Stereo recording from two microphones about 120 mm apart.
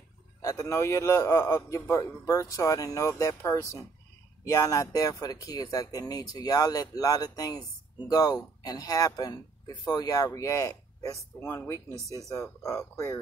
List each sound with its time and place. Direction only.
0.4 s a man's voice: 30° left (ahead or behind)